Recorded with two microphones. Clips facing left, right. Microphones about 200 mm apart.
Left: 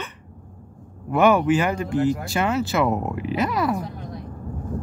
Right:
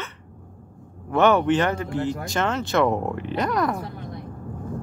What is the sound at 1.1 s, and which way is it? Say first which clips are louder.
Speech: left 1 dB; 10° left (ahead or behind).